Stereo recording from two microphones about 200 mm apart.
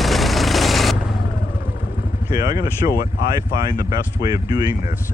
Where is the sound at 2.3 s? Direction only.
20° right (ahead or behind).